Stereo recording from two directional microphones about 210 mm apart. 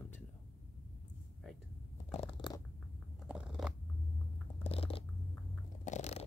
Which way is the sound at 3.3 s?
5° right (ahead or behind).